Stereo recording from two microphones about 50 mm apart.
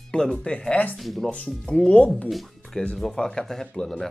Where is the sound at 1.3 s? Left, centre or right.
Centre.